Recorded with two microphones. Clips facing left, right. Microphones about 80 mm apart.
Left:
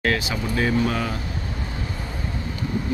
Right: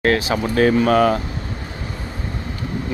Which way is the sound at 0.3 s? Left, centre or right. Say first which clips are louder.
Right 7 dB; right.